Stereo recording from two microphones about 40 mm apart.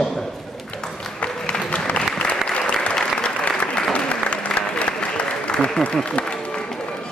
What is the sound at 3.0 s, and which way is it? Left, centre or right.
Applause, centre.